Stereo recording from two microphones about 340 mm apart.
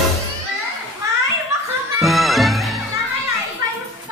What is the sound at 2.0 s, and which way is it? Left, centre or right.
Music, centre.